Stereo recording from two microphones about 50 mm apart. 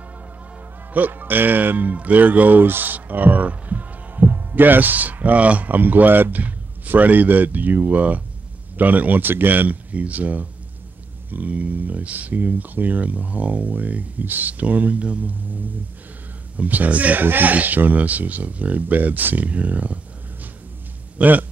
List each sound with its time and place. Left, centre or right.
0.9 s speech: right
21.2 s speech: right